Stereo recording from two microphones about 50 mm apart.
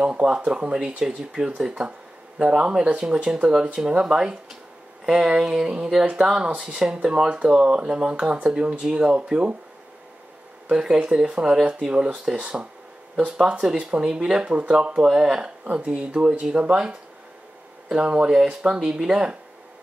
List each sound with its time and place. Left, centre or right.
0.5 s speech: centre
10.7 s speech: centre
15.6 s speech: right